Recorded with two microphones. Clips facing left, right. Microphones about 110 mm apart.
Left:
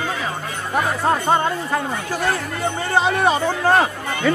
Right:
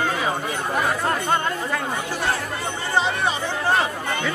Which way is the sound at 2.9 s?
50° left (ahead or behind).